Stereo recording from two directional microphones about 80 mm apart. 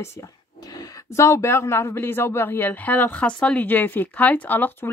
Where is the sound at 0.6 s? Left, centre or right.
Left.